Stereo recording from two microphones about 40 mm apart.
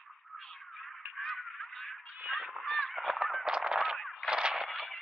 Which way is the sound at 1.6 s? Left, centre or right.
Centre.